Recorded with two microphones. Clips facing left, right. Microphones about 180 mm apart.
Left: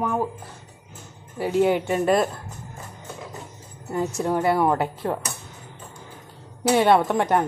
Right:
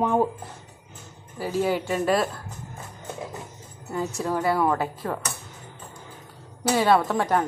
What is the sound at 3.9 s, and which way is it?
A woman's voice, 20° left (ahead or behind).